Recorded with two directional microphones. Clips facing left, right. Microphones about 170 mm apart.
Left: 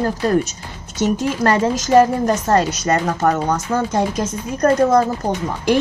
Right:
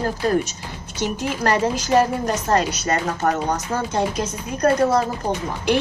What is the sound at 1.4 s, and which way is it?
A woman's voice, 45° left (ahead or behind).